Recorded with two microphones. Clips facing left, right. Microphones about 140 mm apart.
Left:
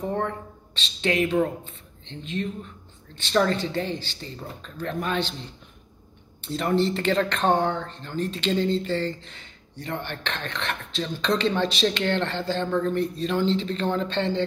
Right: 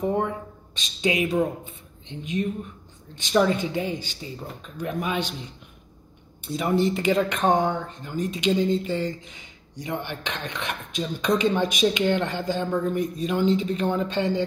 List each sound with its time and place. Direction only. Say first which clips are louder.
0.0 s speech: right 3 dB; 10° right (ahead or behind)